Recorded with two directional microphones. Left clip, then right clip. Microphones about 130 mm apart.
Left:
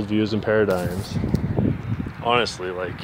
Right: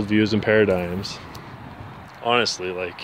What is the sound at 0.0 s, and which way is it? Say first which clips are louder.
Speech: right 2 dB; 30° right (ahead or behind).